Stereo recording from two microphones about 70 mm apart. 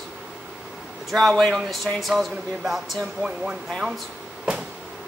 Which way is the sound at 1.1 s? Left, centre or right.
Centre.